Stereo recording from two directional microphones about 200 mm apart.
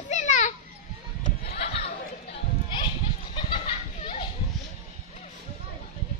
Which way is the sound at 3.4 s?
25° left (ahead or behind).